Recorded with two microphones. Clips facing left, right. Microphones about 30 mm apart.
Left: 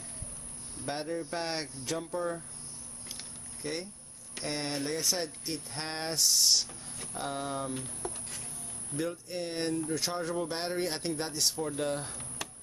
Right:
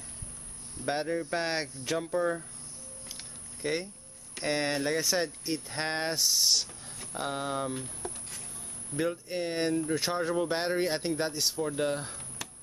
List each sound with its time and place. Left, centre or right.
0.8 s speech: centre
3.6 s speech: centre
7.7 s pigeon: centre
8.9 s speech: centre